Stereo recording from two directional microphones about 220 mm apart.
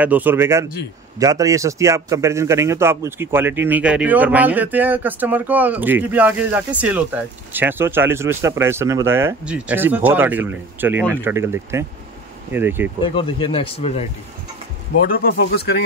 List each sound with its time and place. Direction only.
0.0 s a man's voice: 5° right (ahead or behind)
13.0 s speech: 25° left (ahead or behind)
15.0 s speech: 40° left (ahead or behind)